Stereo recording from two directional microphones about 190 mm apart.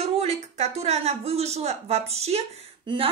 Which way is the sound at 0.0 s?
35° right (ahead or behind).